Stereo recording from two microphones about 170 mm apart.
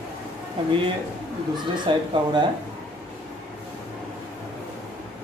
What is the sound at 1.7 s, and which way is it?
Speech, 25° right (ahead or behind).